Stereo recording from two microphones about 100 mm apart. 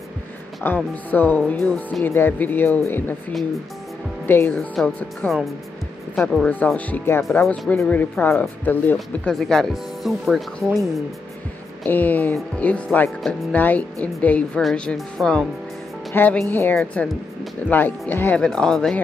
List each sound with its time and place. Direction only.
0.7 s speech: 20° left (ahead or behind)
4.3 s speech: 20° left (ahead or behind)
4.6 s speech: 10° left (ahead or behind)
6.4 s speech: 15° left (ahead or behind)
7.4 s speech: 5° left (ahead or behind)
7.9 s speech: 20° left (ahead or behind)
9.3 s speech: 5° left (ahead or behind)
11.8 s speech: 15° left (ahead or behind)
14.6 s speech: centre (ahead or behind)
16.1 s speech: 20° left (ahead or behind)
18.4 s speech: 5° left (ahead or behind)